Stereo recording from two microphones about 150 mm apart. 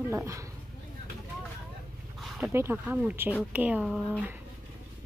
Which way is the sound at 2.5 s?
15° right (ahead or behind).